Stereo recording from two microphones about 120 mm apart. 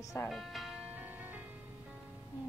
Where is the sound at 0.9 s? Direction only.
15° right (ahead or behind).